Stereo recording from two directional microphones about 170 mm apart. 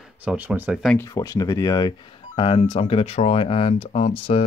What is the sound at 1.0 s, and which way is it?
Speech, 20° left (ahead or behind).